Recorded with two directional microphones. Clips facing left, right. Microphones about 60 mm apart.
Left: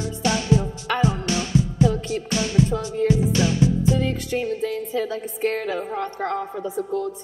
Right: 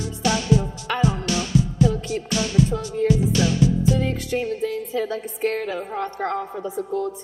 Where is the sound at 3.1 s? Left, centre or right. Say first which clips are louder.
Right 1 dB; left.